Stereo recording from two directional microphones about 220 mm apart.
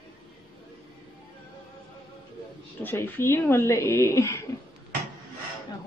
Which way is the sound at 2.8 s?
10° left (ahead or behind).